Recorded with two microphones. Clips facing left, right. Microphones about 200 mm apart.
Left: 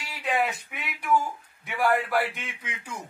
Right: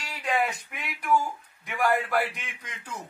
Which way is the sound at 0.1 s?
5° left (ahead or behind).